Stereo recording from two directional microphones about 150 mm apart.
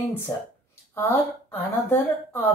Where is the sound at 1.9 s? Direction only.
15° left (ahead or behind).